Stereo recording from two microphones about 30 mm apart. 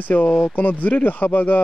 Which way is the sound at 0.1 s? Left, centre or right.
Left.